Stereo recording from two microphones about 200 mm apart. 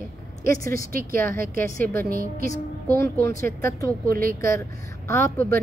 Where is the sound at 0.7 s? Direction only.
45° right (ahead or behind).